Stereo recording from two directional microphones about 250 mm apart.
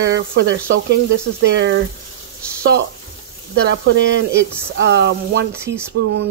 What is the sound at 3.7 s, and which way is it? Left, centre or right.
Speech, right.